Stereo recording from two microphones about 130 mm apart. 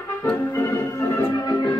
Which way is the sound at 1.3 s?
30° left (ahead or behind).